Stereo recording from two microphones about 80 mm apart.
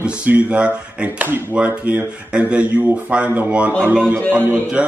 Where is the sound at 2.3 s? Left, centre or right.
Centre.